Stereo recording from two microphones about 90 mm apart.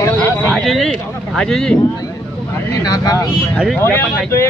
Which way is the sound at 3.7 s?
25° left (ahead or behind).